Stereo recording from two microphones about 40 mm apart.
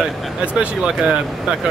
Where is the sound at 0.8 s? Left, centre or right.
Centre.